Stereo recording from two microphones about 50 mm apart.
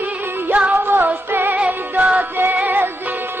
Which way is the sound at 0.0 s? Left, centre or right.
Right.